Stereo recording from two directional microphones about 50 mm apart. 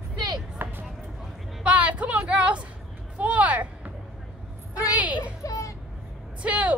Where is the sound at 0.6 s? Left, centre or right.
Right.